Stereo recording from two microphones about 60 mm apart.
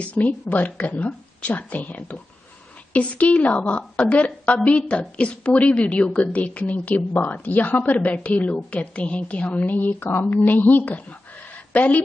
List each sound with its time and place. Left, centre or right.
0.0 s a woman's voice: left